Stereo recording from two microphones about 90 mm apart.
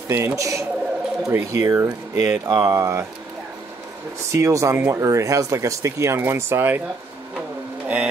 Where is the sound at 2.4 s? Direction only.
45° right (ahead or behind).